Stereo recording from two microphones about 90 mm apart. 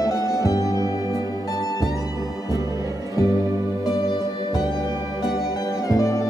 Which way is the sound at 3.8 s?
55° left (ahead or behind).